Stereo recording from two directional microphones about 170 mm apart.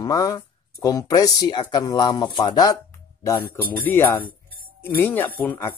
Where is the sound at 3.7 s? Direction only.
10° left (ahead or behind).